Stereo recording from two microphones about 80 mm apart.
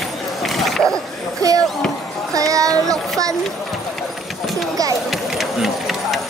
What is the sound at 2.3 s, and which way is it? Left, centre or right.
Child singing, right.